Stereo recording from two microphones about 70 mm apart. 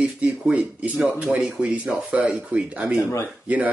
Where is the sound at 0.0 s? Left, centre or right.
Centre.